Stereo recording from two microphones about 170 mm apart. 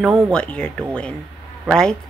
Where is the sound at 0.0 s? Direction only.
Centre (ahead or behind).